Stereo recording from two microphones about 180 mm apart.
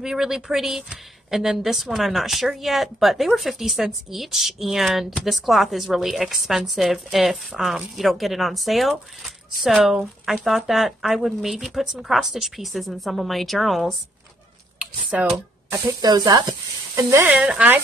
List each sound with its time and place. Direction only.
0.0 s a woman's voice: centre (ahead or behind)
16.0 s speech: 20° right (ahead or behind); by 17.7 s 5° right (ahead or behind)